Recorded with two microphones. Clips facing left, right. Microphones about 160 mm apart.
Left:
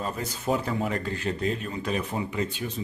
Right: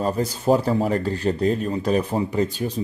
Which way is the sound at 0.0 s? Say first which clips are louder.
Right 8 dB; 35° right (ahead or behind).